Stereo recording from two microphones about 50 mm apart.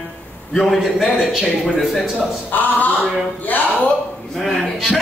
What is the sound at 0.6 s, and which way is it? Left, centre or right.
Speech, centre.